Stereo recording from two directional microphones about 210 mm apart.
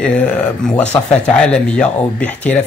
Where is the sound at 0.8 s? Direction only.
30° left (ahead or behind).